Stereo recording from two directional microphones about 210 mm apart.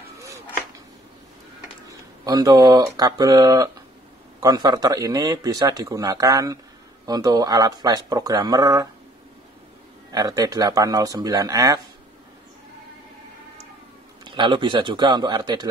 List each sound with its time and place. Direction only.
1.9 s speech: 15° right (ahead or behind)
10.1 s speech: 15° right (ahead or behind)
14.2 s speech: 20° right (ahead or behind)